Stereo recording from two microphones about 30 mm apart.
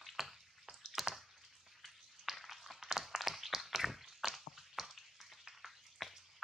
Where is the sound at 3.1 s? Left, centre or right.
Centre.